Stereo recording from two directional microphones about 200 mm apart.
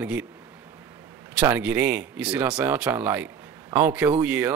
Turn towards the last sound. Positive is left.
turn(degrees=-5)  # may be behind; listen again after turning